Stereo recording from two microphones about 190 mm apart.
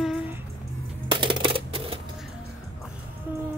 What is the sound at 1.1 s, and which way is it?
Typewriter, 25° right (ahead or behind).